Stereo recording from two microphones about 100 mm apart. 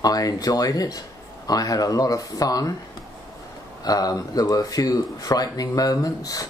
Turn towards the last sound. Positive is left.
turn(degrees=35)  # may be behind; listen again after turning